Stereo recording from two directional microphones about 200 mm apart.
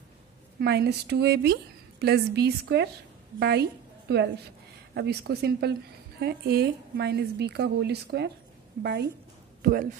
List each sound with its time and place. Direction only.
0.6 s a woman's voice: 55° right (ahead or behind)
9.6 s a man's voice: 45° right (ahead or behind)